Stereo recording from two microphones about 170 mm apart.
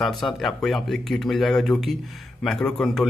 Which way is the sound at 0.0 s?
Centre (ahead or behind).